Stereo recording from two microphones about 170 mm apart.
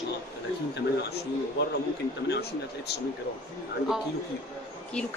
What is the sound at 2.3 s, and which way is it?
Speech, 70° left (ahead or behind).